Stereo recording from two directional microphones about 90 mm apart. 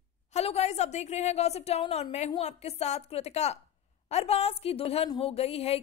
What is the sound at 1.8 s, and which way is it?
Speech, 90° left.